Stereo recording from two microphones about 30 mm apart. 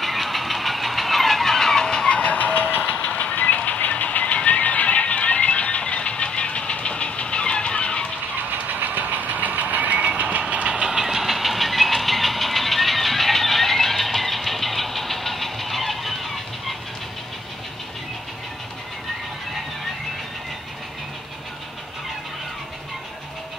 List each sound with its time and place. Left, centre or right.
0.0 s vehicle: centre
2.0 s music: left
2.3 s vehicle: left
3.0 s a sound: left
4.0 s music: left
5.8 s vehicle: left
8.6 s vehicle: right
10.7 s vehicle: right; by 16.7 s centre